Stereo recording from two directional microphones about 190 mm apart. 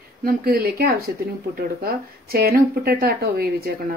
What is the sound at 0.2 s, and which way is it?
Speech, 50° right (ahead or behind).